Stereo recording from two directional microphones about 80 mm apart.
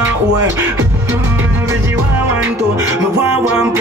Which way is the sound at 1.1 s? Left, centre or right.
Right.